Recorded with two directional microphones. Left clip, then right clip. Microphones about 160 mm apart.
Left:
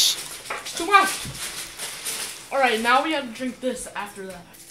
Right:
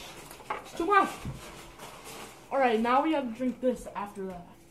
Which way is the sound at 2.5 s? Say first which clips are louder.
Left 6 dB; 45° right (ahead or behind).